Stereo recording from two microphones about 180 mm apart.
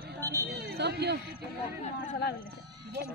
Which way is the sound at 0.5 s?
65° right (ahead or behind).